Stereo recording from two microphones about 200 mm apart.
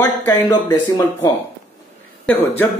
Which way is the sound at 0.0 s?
15° left (ahead or behind).